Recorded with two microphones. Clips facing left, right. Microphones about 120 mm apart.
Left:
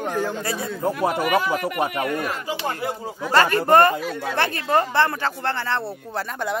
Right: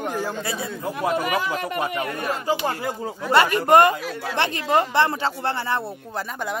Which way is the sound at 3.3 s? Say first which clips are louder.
Even; 15° right (ahead or behind).